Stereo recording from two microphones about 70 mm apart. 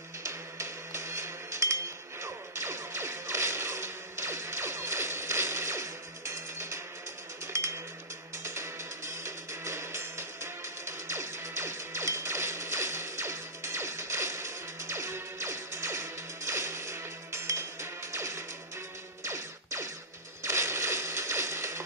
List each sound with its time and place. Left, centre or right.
0.2 s music: right
2.5 s whip: right
8.5 s music: right
20.4 s a sound: right